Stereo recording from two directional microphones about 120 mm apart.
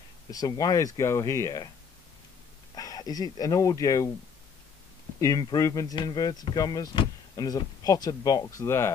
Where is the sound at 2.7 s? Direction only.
30° left (ahead or behind).